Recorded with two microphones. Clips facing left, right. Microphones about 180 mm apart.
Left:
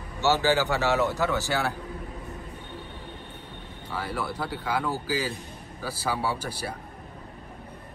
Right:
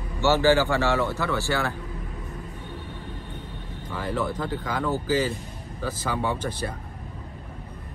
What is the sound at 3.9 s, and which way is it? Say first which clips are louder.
Speech: right 3 dB; 10° left (ahead or behind).